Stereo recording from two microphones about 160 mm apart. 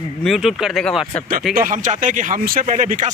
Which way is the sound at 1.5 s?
60° right (ahead or behind).